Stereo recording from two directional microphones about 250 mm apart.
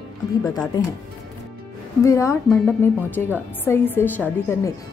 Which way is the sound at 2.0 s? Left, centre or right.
Centre.